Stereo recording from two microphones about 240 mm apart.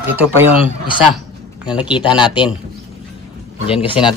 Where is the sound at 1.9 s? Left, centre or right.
Centre.